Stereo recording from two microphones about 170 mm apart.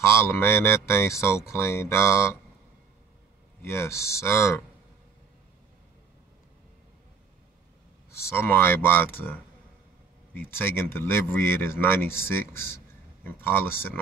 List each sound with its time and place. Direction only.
0.0 s speech: 15° left (ahead or behind)
3.6 s speech: 15° left (ahead or behind)
8.1 s speech: 15° left (ahead or behind)
10.3 s speech: 10° left (ahead or behind)